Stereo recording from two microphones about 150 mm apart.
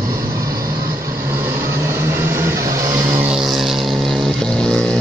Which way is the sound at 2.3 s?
20° right (ahead or behind).